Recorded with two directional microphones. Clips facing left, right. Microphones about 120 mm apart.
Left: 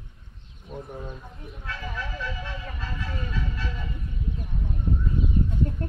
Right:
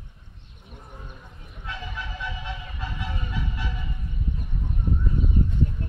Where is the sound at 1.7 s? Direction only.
20° right (ahead or behind).